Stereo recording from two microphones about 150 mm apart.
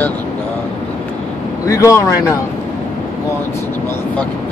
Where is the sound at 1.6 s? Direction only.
20° left (ahead or behind).